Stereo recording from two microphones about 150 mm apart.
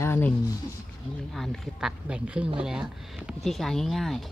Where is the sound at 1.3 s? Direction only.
Centre (ahead or behind).